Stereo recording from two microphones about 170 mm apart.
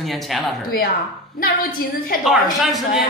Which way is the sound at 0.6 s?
60° left (ahead or behind).